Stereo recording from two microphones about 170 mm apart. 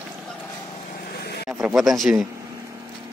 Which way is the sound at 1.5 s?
5° right (ahead or behind).